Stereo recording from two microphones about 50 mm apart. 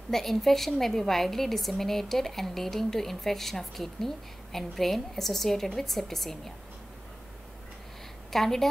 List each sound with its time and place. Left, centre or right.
0.1 s a woman's voice: centre
8.3 s a woman's voice: centre